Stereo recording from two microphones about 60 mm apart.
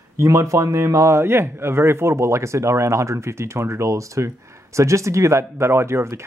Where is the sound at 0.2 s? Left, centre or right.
Right.